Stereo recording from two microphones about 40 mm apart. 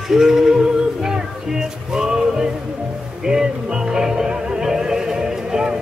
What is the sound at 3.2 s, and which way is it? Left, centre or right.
Music, centre.